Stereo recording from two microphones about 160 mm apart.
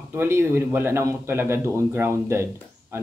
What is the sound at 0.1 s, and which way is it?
Speech, 15° right (ahead or behind).